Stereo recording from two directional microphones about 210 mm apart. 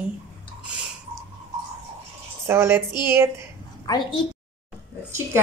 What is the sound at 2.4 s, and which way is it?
Speech, 10° right (ahead or behind).